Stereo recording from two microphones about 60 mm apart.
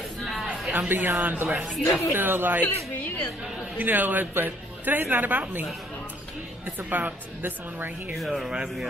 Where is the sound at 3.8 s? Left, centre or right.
Right.